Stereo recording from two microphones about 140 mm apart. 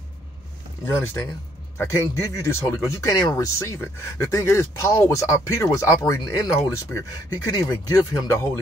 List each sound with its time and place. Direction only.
0.8 s speech: 15° left (ahead or behind)